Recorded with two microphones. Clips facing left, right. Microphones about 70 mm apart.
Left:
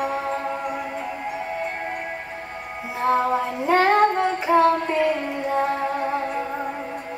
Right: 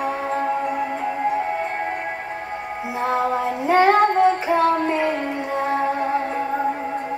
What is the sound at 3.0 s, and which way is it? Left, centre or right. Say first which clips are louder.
Child singing: left 1 dB; centre.